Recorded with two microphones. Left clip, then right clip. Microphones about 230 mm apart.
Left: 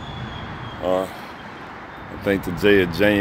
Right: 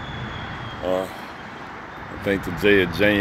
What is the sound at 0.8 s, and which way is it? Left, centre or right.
Speech, centre.